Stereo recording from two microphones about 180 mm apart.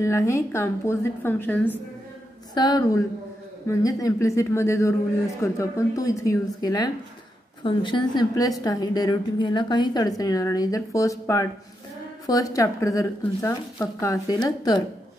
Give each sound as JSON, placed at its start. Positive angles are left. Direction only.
{"t": 0.0, "sound": "a man's voice", "side_deg": 15}
{"t": 2.5, "sound": "a woman's voice", "side_deg": 20}